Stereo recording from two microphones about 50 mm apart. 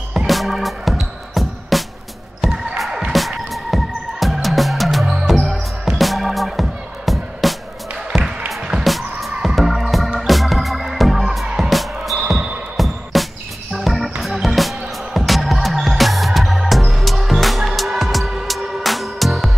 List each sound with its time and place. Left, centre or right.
0.3 s music: centre
2.5 s music: right
3.1 s music: centre
10.2 s organ: centre
11.4 s music: centre
11.7 s music: centre